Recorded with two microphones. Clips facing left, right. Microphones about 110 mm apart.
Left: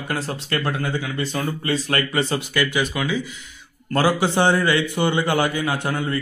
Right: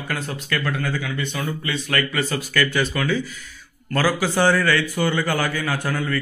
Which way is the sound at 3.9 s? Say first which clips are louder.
Left 2 dB; 25° left (ahead or behind).